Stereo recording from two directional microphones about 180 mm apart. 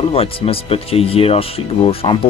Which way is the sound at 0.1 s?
30° left (ahead or behind).